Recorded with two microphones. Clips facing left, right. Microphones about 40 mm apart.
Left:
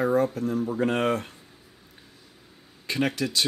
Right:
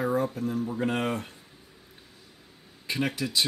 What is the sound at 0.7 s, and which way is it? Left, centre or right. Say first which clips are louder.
Speech: left 6 dB; centre.